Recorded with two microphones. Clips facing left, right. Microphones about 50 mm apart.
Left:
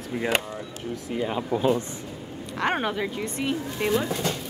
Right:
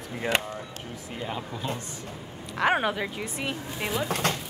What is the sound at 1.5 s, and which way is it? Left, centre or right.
Speech, left.